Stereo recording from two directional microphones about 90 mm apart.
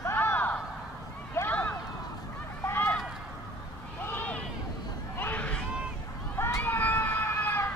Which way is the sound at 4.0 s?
20° left (ahead or behind).